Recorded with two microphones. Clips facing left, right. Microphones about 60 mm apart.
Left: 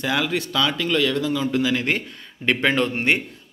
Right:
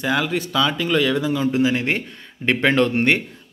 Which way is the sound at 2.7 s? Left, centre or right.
Right.